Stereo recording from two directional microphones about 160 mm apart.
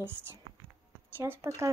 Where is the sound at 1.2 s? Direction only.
15° right (ahead or behind).